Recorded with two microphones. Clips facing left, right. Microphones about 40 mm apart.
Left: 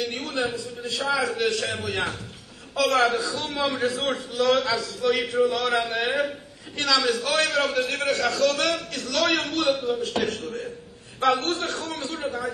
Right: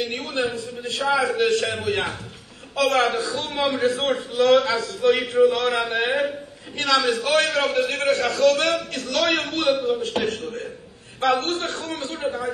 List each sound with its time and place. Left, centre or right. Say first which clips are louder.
0.0 s a sound: right 2 dB; right
1.0 s a man's voice: right 4 dB; right
12.1 s a man's voice: right 4 dB; right